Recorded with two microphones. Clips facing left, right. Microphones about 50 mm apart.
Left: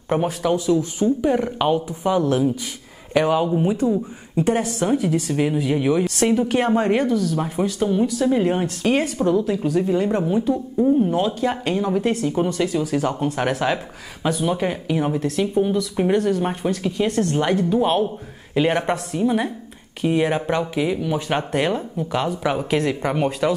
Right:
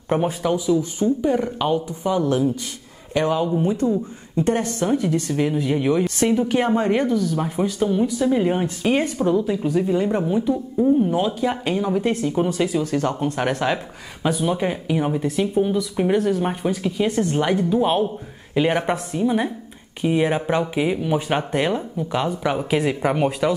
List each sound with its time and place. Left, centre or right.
0.1 s speech: centre
3.6 s a woman's voice: centre
7.0 s speech: centre
12.8 s speech: centre
20.7 s speech: centre
21.3 s speech: centre